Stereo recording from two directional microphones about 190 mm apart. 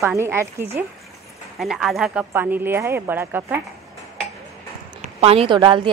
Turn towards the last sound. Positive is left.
turn(degrees=-25)  # may be behind; listen again after turning